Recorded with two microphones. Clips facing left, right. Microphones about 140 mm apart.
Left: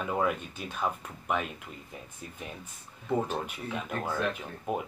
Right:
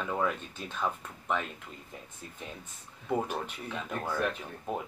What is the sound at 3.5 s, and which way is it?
Speech, 10° left (ahead or behind).